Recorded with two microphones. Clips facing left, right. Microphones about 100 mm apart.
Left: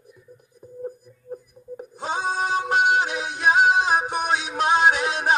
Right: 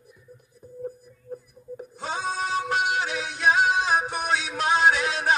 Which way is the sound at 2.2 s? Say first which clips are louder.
Left 3 dB; 50° left (ahead or behind).